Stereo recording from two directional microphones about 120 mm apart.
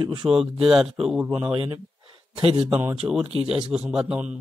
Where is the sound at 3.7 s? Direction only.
5° right (ahead or behind).